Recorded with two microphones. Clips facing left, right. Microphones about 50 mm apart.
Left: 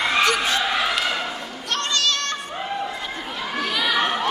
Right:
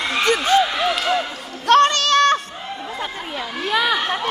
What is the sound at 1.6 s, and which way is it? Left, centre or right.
Child singing, right.